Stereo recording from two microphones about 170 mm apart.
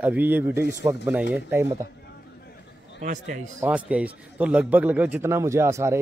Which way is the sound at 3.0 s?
50° right (ahead or behind).